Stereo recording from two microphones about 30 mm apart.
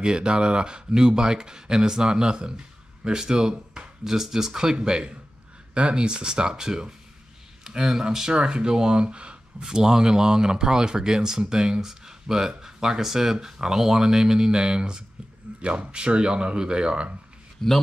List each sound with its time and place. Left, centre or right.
0.0 s speech: right
4.7 s speech: right
7.7 s a sound: centre
8.4 s speech: right
9.0 s speech: right
9.7 s speech: right
15.5 s a sound: right
15.9 s speech: right
17.6 s a man's voice: centre